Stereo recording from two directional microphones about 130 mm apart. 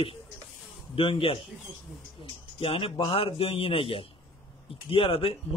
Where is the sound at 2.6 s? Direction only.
45° left (ahead or behind).